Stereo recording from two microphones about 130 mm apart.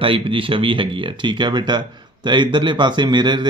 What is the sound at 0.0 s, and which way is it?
Speech, 45° right (ahead or behind).